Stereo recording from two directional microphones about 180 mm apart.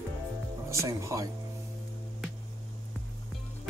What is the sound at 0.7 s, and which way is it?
Speech, 15° right (ahead or behind).